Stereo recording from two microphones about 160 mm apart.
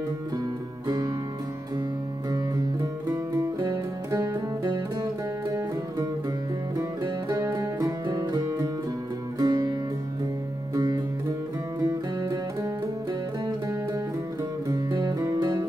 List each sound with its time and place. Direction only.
0.8 s music: 25° right (ahead or behind)
2.3 s music: 25° right (ahead or behind)